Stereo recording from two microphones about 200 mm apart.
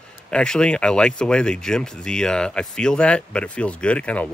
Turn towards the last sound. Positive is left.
turn(degrees=5)  # may be behind; listen again after turning